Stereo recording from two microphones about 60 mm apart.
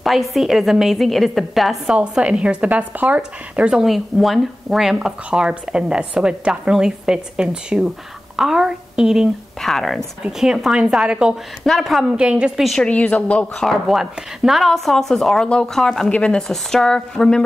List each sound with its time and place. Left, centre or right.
0.0 s a woman's voice: centre
2.0 s speech: centre
3.2 s speech: centre
3.8 s speech: centre
9.6 s a woman's voice: centre
10.4 s speech: centre
11.6 s a woman's voice: centre
12.1 s speech: centre
12.7 s speech: centre
13.6 s a woman's voice: centre